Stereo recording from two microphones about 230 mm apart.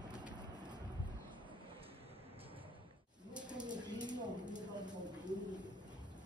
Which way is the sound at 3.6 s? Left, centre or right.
Centre.